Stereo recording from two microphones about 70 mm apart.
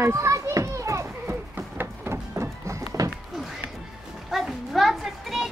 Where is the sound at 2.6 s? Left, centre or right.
Right.